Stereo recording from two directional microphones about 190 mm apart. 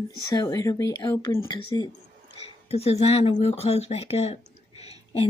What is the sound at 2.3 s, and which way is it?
Speech, 30° left (ahead or behind).